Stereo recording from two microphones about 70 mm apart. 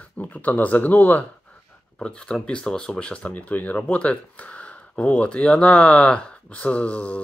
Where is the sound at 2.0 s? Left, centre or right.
Centre.